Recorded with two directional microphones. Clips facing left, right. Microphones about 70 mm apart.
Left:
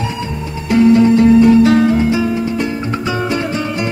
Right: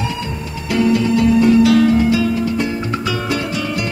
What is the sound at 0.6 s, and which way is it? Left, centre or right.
Music, left.